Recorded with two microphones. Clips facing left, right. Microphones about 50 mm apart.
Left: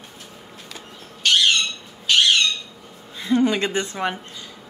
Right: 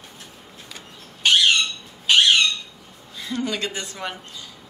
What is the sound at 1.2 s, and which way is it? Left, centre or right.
Squawk, centre.